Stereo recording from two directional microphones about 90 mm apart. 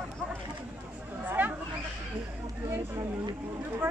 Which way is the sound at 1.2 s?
20° right (ahead or behind).